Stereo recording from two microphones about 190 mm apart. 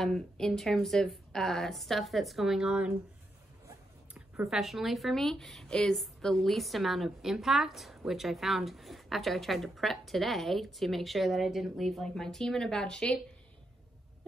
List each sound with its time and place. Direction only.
0.0 s a woman's voice: centre (ahead or behind)
3.6 s a sound: 15° right (ahead or behind)
4.5 s a woman's voice: centre (ahead or behind)